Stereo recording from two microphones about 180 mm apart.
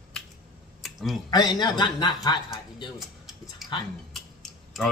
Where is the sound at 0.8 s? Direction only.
Centre (ahead or behind).